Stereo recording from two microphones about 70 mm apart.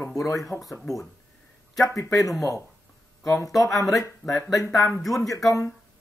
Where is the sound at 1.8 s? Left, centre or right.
Left.